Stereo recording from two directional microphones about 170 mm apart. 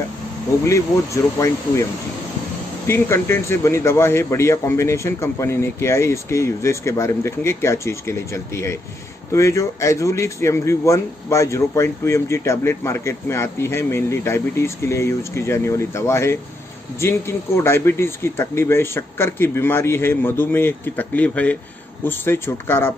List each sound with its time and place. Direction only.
0.7 s speech: 20° left (ahead or behind)
2.9 s speech: 15° left (ahead or behind)